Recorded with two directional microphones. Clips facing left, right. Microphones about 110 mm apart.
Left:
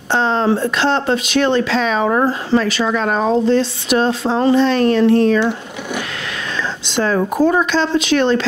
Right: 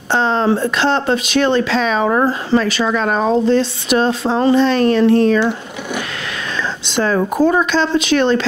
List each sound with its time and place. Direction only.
0.2 s speech: 20° right (ahead or behind)
6.9 s speech: 25° right (ahead or behind)
7.7 s speech: 15° right (ahead or behind)